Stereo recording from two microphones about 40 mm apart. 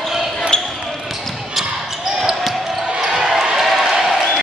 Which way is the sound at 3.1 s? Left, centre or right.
Centre.